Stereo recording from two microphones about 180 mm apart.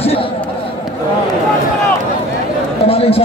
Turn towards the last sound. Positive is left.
turn(degrees=35)  # may be behind; listen again after turning